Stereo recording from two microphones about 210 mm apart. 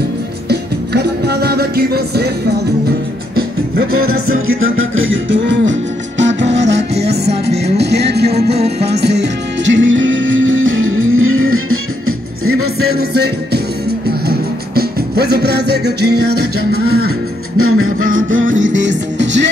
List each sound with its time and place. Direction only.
0.5 s music: 50° right (ahead or behind)
3.9 s music: 90° right
12.9 s music: 50° right (ahead or behind)
18.0 s music: 70° right (ahead or behind)